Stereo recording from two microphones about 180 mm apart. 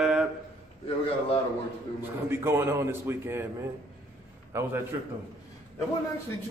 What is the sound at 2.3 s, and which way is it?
A man's voice, 15° right (ahead or behind).